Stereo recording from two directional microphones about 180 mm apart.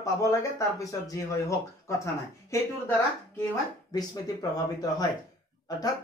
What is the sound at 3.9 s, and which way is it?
Speech, 20° left (ahead or behind).